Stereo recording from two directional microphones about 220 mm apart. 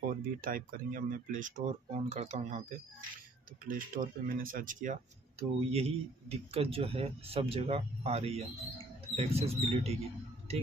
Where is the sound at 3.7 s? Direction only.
40° right (ahead or behind).